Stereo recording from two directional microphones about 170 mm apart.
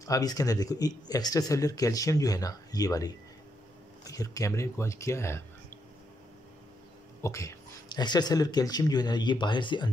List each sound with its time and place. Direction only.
0.0 s speech: 20° left (ahead or behind)
7.2 s speech: 15° left (ahead or behind)